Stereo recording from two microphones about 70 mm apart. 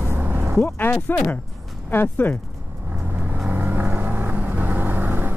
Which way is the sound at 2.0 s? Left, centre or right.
Left.